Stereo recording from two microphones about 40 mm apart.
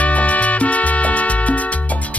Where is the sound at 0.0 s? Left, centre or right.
Left.